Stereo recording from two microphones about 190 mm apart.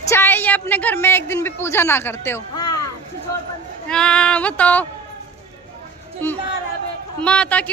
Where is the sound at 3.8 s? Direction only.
5° left (ahead or behind).